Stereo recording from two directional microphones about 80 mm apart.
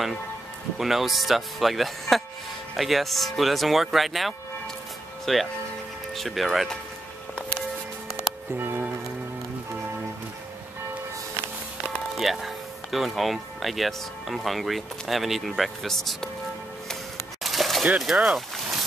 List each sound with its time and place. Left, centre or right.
0.7 s speech: centre
8.5 s music: right
12.2 s speech: centre
17.4 s a sound: centre
17.8 s speech: centre